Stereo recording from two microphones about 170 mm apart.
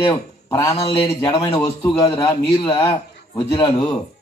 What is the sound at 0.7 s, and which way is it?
A man's voice, 35° left (ahead or behind).